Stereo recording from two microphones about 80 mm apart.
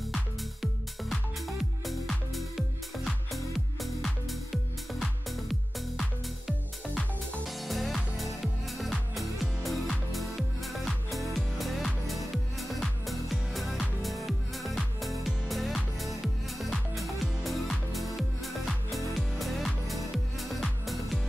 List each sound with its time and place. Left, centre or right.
0.1 s music: centre